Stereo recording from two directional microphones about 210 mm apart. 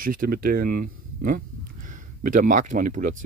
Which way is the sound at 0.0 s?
40° right (ahead or behind).